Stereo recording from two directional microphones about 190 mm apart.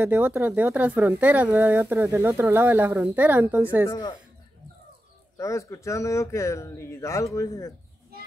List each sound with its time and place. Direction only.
0.0 s speech: 10° right (ahead or behind)
5.4 s speech: 15° left (ahead or behind)